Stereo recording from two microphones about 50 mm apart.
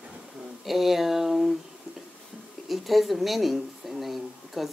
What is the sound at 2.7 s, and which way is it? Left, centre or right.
Speech, centre.